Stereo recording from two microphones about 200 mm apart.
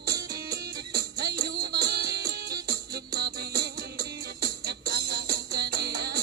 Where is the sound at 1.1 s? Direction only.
50° right (ahead or behind).